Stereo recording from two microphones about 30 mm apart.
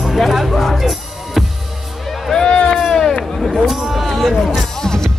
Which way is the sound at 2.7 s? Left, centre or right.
Centre.